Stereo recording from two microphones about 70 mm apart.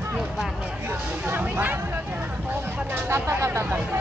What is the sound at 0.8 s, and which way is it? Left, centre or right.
Speech, right.